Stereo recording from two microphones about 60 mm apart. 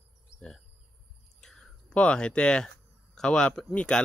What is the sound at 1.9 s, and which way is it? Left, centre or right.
Speech, centre.